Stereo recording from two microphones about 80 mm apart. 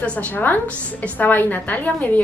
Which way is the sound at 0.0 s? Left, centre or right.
Centre.